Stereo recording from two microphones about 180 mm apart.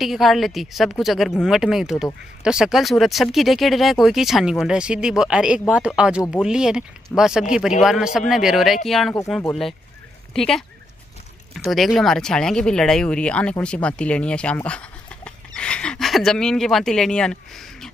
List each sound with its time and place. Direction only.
0.0 s speech: centre (ahead or behind)